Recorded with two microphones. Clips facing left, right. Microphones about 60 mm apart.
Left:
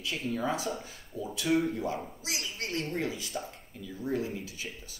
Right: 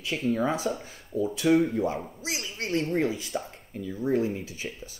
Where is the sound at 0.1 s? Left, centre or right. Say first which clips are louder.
Right 6 dB; right.